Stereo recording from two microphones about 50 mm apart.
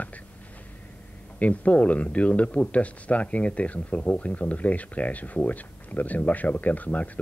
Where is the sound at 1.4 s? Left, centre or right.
Left.